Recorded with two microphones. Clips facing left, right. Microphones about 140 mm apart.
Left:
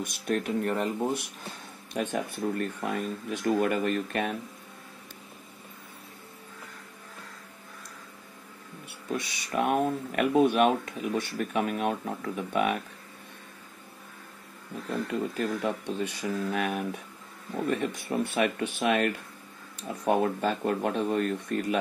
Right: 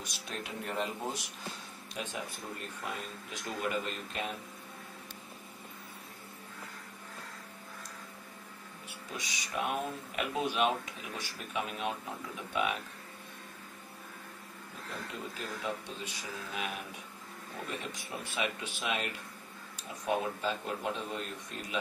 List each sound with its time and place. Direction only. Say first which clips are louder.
0.0 s speech: left 12 dB; 50° left (ahead or behind)
9.1 s speech: left 8 dB; 55° left (ahead or behind)
15.3 s speech: left 9 dB; 60° left (ahead or behind)